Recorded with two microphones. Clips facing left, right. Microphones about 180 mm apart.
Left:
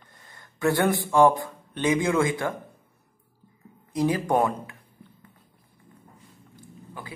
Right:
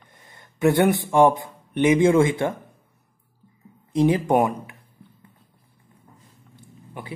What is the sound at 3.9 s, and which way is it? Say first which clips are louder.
Speech: right 4 dB; 25° right (ahead or behind).